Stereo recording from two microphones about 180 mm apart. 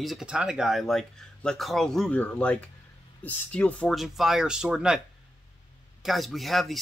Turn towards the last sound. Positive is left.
turn(degrees=0)  # may be behind; listen again after turning